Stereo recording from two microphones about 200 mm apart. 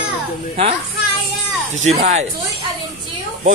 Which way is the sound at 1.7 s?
35° right (ahead or behind).